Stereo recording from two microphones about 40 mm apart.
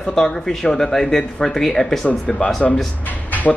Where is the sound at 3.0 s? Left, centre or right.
Left.